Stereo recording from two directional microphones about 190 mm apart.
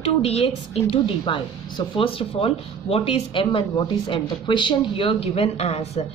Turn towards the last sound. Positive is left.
turn(degrees=35)  # may be behind; listen again after turning